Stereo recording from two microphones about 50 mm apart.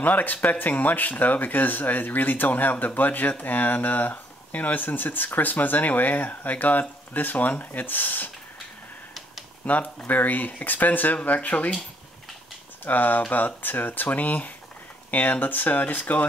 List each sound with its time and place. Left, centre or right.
0.0 s speech: left
9.6 s speech: left
12.8 s speech: left